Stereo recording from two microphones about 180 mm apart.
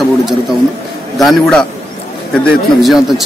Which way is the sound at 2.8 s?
Centre (ahead or behind).